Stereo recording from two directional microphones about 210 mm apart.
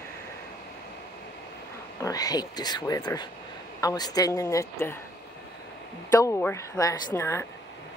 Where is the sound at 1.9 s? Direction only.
15° left (ahead or behind).